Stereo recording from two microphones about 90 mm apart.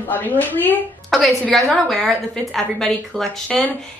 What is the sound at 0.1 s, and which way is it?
Speech, 20° left (ahead or behind).